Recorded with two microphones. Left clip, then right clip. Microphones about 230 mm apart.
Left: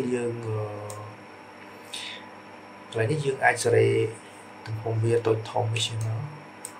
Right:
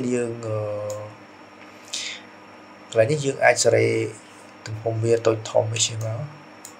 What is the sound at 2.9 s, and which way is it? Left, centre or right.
Speech, right.